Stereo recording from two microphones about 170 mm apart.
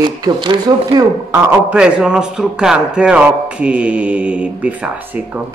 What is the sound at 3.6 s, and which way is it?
Mantra, 5° right (ahead or behind).